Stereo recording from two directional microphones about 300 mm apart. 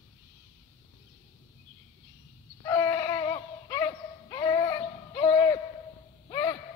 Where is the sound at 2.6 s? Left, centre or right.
Centre.